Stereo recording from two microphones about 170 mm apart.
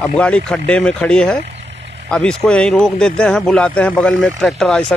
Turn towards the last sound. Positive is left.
turn(degrees=0)  # may be behind; listen again after turning